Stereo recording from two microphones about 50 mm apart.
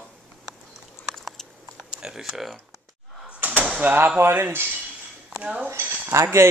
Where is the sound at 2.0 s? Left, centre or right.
Centre.